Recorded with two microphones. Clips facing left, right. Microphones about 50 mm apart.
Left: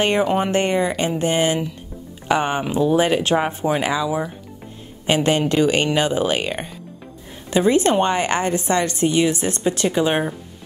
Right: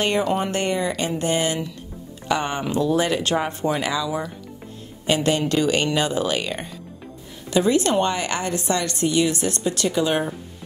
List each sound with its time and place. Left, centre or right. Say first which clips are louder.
0.2 s speech: left 4 dB; left